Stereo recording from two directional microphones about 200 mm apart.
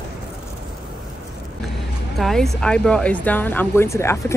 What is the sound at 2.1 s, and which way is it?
Speech, centre (ahead or behind).